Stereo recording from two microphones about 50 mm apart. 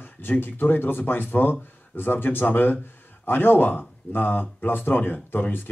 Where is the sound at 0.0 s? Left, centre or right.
Left.